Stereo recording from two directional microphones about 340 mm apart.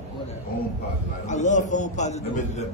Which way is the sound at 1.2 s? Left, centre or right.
Left.